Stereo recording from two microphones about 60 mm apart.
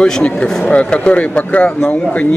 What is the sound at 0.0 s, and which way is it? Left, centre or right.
Speech, centre.